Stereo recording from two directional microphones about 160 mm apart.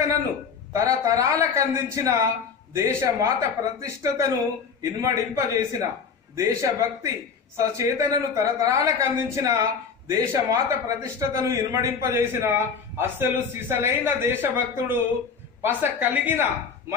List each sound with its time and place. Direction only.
0.7 s a man's voice: 20° right (ahead or behind)